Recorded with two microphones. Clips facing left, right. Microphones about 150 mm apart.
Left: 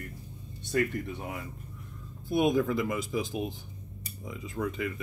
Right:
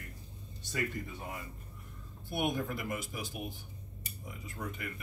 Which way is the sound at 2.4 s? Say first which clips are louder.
Left 8 dB; 90° left.